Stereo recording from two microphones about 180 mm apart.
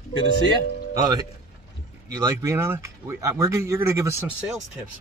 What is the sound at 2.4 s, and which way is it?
Speech, 15° right (ahead or behind).